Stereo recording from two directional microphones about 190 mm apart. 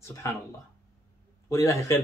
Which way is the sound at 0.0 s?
15° left (ahead or behind).